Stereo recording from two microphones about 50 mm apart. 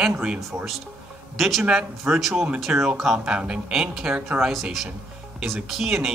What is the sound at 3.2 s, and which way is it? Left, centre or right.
Speech, centre.